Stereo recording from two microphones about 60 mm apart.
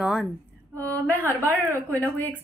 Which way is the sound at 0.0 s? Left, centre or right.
Centre.